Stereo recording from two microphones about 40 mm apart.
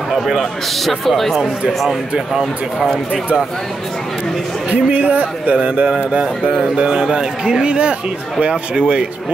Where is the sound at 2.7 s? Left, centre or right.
Centre.